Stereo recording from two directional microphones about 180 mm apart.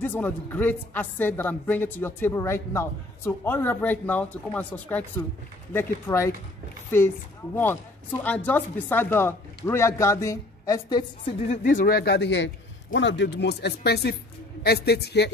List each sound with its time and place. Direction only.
0.0 s a woman's voice: 10° left (ahead or behind)
7.5 s a woman's voice: 10° left (ahead or behind)
11.4 s a man's voice: 40° left (ahead or behind); by 15.3 s 65° left (ahead or behind)